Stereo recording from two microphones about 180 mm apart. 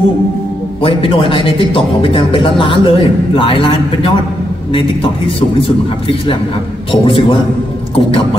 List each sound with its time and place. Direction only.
0.8 s speech: 30° left (ahead or behind)
6.9 s speech: 30° left (ahead or behind)